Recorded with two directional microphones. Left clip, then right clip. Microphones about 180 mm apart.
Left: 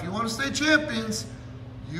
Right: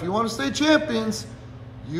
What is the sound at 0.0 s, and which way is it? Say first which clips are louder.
A man's voice: right 4 dB; 15° right (ahead or behind).